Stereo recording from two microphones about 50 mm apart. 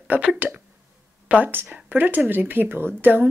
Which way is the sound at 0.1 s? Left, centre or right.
Right.